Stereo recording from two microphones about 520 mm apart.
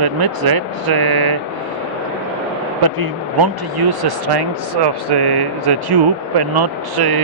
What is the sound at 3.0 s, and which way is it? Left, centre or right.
Speech, right.